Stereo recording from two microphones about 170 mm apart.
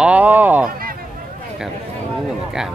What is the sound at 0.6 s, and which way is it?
Speech, 60° right (ahead or behind).